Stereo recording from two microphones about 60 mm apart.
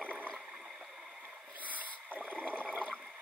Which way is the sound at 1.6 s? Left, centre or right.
Right.